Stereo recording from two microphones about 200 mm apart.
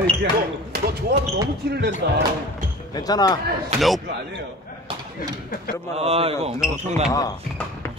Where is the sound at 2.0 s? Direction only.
50° right (ahead or behind).